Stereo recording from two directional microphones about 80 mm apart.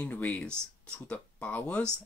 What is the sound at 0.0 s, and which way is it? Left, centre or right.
Speech, centre.